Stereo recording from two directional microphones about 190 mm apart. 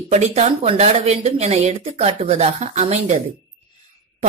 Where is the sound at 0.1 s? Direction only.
35° right (ahead or behind).